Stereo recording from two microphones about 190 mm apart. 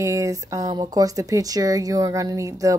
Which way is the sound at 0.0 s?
15° right (ahead or behind).